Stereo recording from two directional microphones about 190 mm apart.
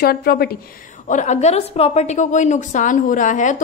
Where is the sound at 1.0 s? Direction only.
40° left (ahead or behind).